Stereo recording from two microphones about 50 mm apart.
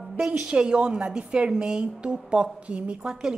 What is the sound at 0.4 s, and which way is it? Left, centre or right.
A woman's voice, centre.